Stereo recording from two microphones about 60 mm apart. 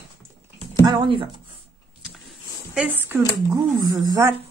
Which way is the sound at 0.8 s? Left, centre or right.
Right.